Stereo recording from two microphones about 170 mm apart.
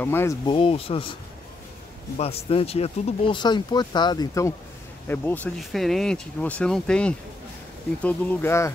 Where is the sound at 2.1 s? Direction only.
35° left (ahead or behind).